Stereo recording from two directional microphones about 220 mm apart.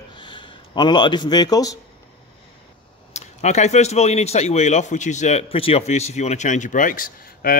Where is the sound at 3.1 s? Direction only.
30° left (ahead or behind).